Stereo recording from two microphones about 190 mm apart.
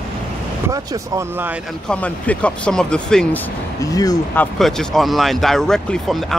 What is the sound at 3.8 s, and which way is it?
Speech, 20° left (ahead or behind).